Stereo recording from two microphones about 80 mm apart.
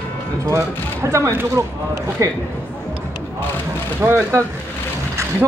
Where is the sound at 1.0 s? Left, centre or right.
Right.